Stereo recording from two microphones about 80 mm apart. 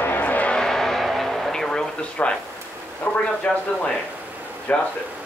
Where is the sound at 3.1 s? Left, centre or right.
Centre.